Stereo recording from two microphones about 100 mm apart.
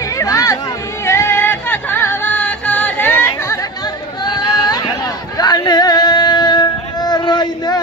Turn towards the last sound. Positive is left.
turn(degrees=45)  # may be behind; listen again after turning